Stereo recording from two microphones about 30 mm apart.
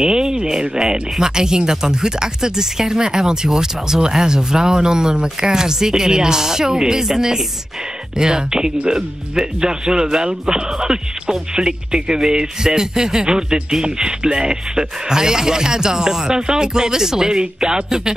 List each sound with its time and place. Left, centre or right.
0.0 s a sound: right
0.5 s speech: right
8.2 s speech: right